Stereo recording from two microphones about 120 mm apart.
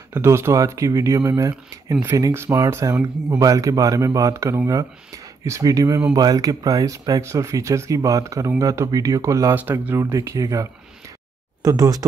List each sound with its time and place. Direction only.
0.1 s speech: 20° right (ahead or behind)